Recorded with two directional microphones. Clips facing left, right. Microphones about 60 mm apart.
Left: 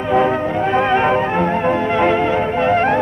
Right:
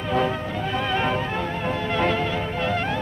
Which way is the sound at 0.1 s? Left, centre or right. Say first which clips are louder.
Left 8 dB; left.